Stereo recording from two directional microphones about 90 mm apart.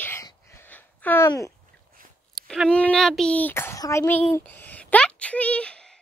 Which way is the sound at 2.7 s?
10° left (ahead or behind).